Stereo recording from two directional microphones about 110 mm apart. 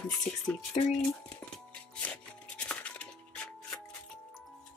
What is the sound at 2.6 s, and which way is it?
Music, 10° left (ahead or behind).